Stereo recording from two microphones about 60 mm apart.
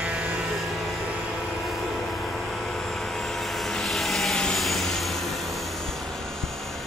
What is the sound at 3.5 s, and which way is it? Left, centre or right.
Vehicle, centre.